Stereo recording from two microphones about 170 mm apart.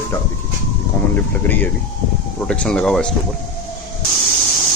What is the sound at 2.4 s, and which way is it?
Speech, 5° left (ahead or behind).